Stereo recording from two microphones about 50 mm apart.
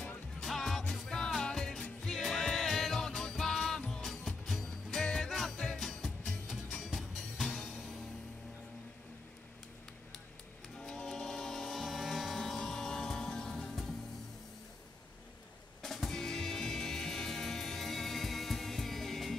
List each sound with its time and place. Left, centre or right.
0.4 s music: centre
1.5 s music: centre
5.8 s music: centre
10.8 s music: centre
15.8 s music: centre